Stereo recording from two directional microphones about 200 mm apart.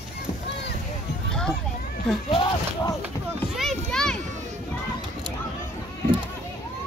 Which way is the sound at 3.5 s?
Centre (ahead or behind).